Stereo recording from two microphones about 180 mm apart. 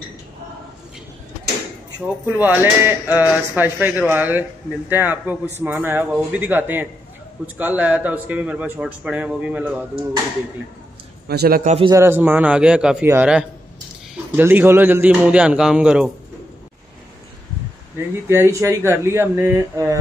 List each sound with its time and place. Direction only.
2.2 s speech: 10° right (ahead or behind)
11.2 s a man's voice: 60° right (ahead or behind)
11.9 s speech: 15° right (ahead or behind)
17.9 s speech: 15° right (ahead or behind)